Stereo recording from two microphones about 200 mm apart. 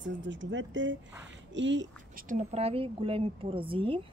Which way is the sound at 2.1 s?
40° right (ahead or behind).